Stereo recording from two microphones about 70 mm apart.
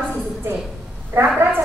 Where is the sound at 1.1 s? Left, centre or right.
Right.